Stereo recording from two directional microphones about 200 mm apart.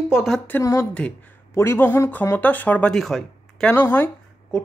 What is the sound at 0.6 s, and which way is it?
Speech, 15° left (ahead or behind).